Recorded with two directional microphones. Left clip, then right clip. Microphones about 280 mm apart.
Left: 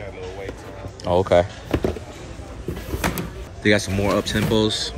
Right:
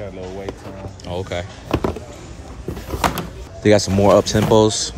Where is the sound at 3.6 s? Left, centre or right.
Centre.